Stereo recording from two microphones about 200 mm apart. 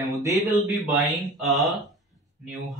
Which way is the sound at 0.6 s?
Centre (ahead or behind).